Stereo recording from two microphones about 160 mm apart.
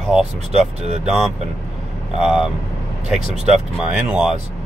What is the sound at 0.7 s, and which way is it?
Speech, 45° right (ahead or behind).